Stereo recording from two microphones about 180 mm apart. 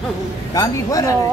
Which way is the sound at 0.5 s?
20° left (ahead or behind).